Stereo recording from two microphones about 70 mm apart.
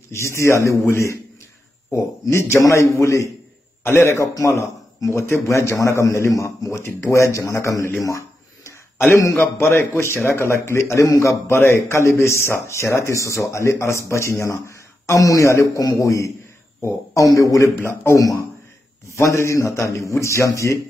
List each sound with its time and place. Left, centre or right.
0.1 s a man's voice: left
8.0 s a sound: left
9.4 s speech: left
11.5 s a man's voice: left
19.1 s a man's voice: left